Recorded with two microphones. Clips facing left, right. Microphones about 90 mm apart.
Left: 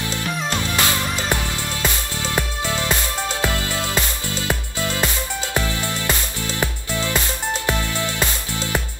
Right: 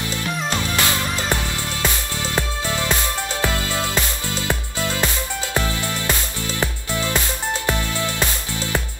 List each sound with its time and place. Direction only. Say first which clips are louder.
0.7 s music: even; 25° left (ahead or behind)
4.5 s music: even; 20° right (ahead or behind)
6.9 s music: right 1 dB; 20° right (ahead or behind)
7.6 s music: left 1 dB; 20° left (ahead or behind)